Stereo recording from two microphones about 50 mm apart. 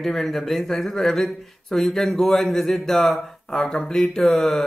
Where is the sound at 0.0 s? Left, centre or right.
Centre.